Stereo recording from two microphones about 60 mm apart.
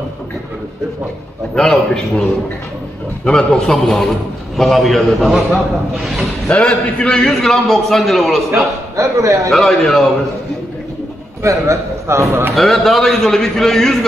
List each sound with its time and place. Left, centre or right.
1.5 s a man's voice: centre
3.3 s a man's voice: centre
6.5 s a man's voice: centre
8.9 s a man's voice: right
9.5 s a man's voice: centre
11.4 s a man's voice: right
12.5 s a man's voice: centre